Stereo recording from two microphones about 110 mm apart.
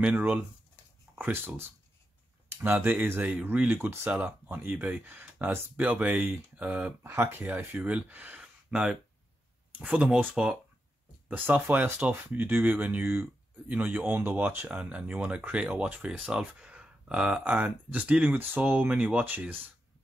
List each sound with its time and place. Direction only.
0.0 s speech: 10° right (ahead or behind)
7.0 s speech: 20° right (ahead or behind)